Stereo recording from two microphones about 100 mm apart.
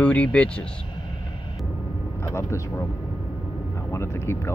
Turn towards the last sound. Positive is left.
turn(degrees=25)  # may be behind; listen again after turning